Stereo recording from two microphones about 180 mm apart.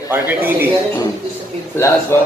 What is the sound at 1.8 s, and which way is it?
Speech, 15° left (ahead or behind).